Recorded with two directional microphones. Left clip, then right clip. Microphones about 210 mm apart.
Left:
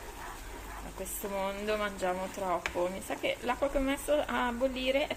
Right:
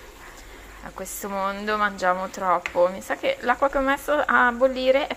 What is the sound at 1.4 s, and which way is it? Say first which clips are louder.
Speech: right 9 dB; 10° right (ahead or behind).